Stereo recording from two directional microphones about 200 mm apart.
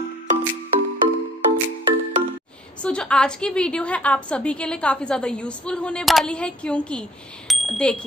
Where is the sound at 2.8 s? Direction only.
5° left (ahead or behind).